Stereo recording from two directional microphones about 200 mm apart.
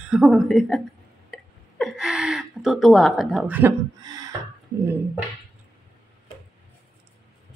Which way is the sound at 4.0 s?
20° right (ahead or behind).